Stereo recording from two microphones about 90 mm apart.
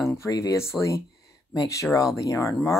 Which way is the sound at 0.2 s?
35° left (ahead or behind).